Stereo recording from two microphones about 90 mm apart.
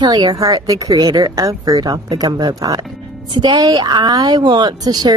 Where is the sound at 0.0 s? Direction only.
50° right (ahead or behind).